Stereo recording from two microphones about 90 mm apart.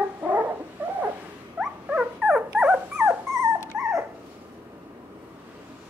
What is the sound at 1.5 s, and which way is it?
Dog, 5° right (ahead or behind).